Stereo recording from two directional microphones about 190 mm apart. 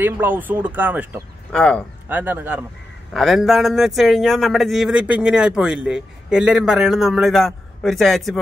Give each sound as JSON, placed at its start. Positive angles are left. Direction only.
{"t": 0.0, "sound": "speech", "side_deg": -10}
{"t": 1.5, "sound": "a man's voice", "side_deg": 5}
{"t": 2.0, "sound": "a man's voice", "side_deg": -10}